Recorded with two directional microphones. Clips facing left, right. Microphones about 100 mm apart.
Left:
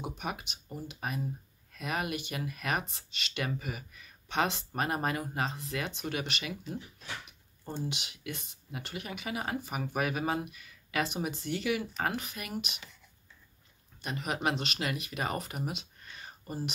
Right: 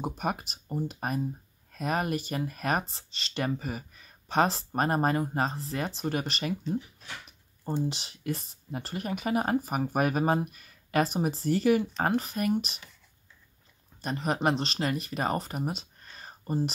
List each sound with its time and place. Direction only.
0.0 s speech: 40° right (ahead or behind)
7.9 s speech: 35° right (ahead or behind)
14.0 s speech: 35° right (ahead or behind)